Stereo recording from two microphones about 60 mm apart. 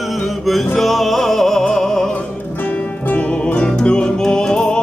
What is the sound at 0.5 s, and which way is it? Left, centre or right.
Music, centre.